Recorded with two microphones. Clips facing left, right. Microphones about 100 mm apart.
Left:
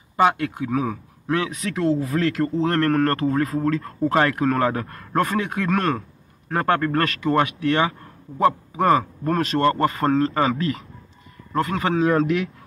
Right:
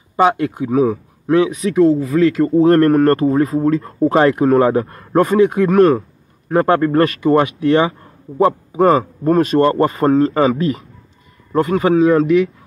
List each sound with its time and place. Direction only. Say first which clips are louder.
0.1 s speech: right 5 dB; 20° right (ahead or behind)
1.8 s speech: right 9 dB; centre (ahead or behind)
2.6 s a man's voice: right 9 dB; 15° right (ahead or behind); by 12.4 s centre (ahead or behind)